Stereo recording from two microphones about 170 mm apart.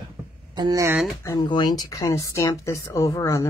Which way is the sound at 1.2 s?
25° left (ahead or behind).